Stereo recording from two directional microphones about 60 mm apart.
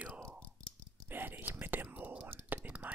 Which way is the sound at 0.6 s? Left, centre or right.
Centre.